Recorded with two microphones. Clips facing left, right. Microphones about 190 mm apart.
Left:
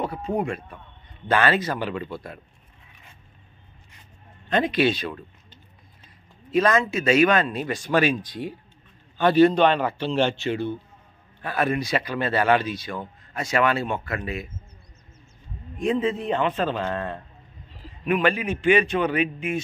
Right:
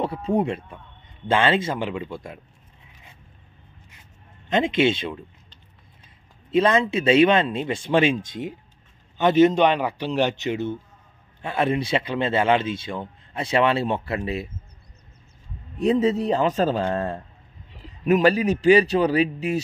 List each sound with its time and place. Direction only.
0.0 s speech: 30° right (ahead or behind)
4.5 s speech: 20° right (ahead or behind)
6.5 s a man's voice: 30° right (ahead or behind)
15.8 s a man's voice: 40° right (ahead or behind)